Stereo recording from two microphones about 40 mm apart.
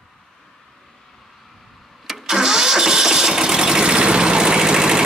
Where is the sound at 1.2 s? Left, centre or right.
Centre.